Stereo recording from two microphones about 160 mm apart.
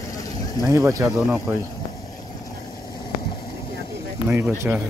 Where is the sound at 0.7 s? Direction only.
20° right (ahead or behind).